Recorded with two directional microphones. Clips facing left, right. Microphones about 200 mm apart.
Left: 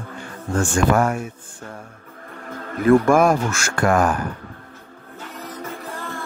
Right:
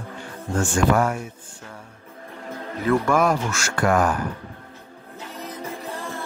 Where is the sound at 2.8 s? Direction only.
50° left (ahead or behind).